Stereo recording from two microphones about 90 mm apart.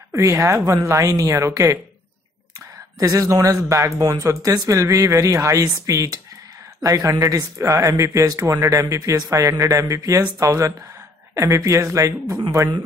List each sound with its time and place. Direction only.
0.1 s speech: 35° right (ahead or behind)
3.0 s speech: 40° right (ahead or behind)